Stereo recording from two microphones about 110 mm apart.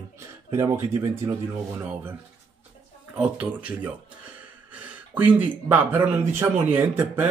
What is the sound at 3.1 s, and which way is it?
Speech, 10° right (ahead or behind).